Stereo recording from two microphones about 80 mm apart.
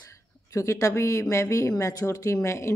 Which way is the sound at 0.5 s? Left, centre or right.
Left.